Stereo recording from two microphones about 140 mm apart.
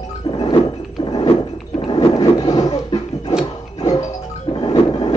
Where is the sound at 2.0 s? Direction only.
25° left (ahead or behind).